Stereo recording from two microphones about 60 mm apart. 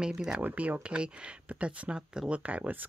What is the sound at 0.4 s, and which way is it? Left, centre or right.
Speech, right.